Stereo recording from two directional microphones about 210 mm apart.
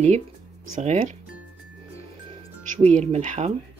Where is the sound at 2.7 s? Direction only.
35° right (ahead or behind).